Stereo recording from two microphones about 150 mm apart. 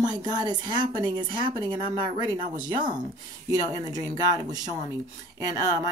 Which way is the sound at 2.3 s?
60° right (ahead or behind).